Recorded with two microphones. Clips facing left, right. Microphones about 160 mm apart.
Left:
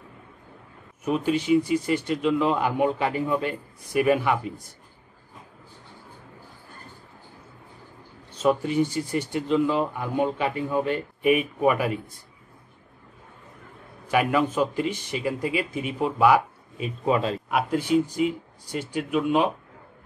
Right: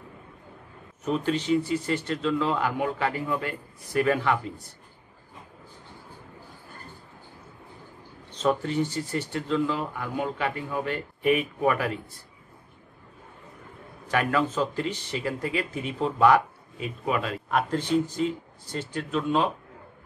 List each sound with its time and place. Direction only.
1.0 s speech: 10° left (ahead or behind)
8.3 s speech: 10° left (ahead or behind)
14.1 s speech: 15° left (ahead or behind)
16.8 s a man's voice: 25° left (ahead or behind)
17.5 s speech: 10° left (ahead or behind)